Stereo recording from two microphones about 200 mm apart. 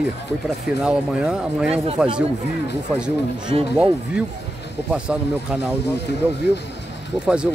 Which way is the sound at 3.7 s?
5° right (ahead or behind).